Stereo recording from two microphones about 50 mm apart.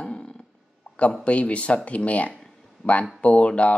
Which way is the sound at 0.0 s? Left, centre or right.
Left.